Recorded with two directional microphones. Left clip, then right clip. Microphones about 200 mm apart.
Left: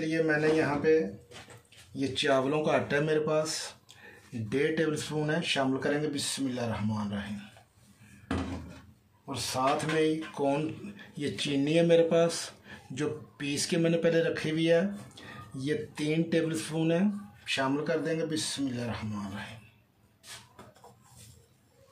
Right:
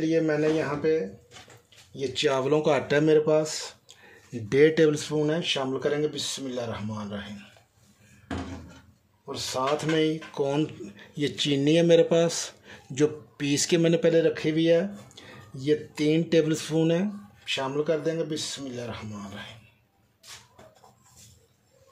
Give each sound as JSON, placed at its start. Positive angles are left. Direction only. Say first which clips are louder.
{"t": 2.0, "sound": "speech", "louder": "right 2 dB", "side_deg": -30}
{"t": 4.5, "sound": "speech", "louder": "right 9 dB", "side_deg": -45}
{"t": 5.0, "sound": "speech", "louder": "right 5 dB", "side_deg": -25}
{"t": 9.2, "sound": "speech", "louder": "right 1 dB", "side_deg": -30}